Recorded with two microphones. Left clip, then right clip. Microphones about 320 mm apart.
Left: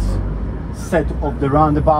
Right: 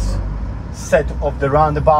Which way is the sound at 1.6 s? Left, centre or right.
Right.